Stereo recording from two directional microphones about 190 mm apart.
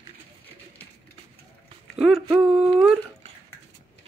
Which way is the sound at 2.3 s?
5° right (ahead or behind).